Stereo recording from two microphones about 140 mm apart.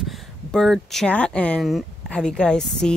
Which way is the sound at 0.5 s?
5° left (ahead or behind).